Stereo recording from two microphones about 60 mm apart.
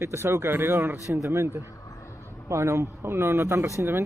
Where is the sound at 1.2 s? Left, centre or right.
Right.